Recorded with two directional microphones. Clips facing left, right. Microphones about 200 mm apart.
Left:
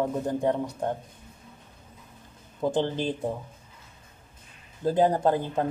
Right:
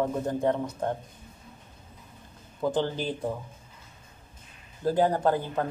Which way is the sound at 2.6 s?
20° left (ahead or behind).